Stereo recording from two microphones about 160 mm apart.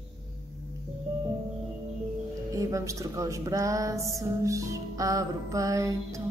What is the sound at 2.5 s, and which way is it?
Speech, 20° right (ahead or behind).